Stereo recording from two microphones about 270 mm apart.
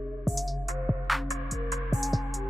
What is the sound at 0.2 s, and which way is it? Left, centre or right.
Music, centre.